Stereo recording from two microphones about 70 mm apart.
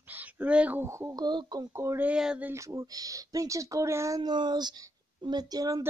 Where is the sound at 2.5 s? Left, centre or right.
Right.